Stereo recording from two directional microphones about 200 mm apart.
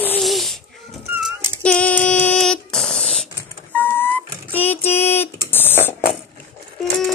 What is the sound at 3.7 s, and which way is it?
Vehicle, 10° left (ahead or behind).